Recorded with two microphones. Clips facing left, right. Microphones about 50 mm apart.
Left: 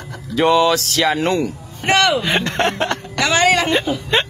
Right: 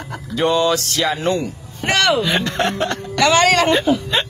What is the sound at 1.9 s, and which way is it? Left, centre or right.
Speech, centre.